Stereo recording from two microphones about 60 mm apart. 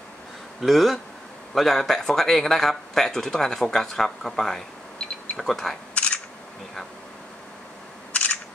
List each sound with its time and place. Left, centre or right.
0.6 s speech: centre
5.9 s a sound: centre
8.1 s camera: left